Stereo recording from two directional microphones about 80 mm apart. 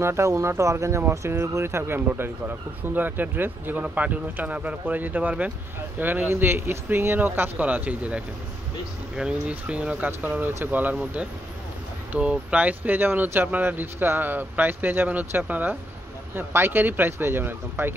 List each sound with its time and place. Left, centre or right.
0.0 s speech: right